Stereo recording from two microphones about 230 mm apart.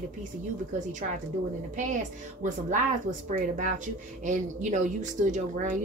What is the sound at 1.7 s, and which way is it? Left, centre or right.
A woman's voice, right.